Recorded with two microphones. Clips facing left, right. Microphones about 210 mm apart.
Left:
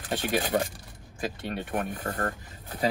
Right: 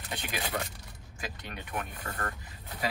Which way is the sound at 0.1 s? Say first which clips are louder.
Left 9 dB; 45° left (ahead or behind).